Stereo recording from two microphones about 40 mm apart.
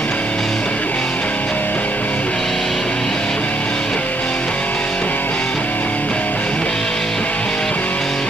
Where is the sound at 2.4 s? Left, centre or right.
Centre.